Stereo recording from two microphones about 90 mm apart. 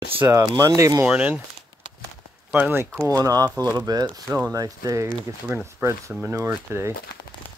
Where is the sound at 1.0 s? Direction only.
15° right (ahead or behind).